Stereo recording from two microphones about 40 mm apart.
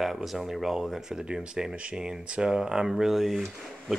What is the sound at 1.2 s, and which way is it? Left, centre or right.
Speech, right.